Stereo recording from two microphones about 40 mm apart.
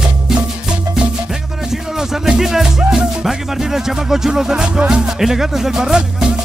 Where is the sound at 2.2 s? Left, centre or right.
Centre.